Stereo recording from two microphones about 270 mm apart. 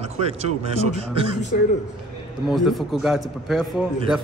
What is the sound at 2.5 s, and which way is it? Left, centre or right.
A man's voice, centre.